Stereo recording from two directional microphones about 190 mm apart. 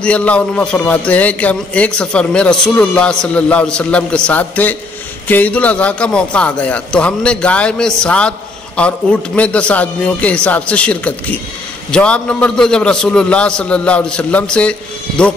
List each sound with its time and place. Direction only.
0.0 s a man's voice: 5° left (ahead or behind)